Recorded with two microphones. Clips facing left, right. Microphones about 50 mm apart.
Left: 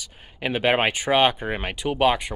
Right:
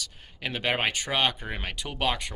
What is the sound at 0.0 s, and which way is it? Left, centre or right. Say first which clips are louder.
Speech: left 6 dB; left.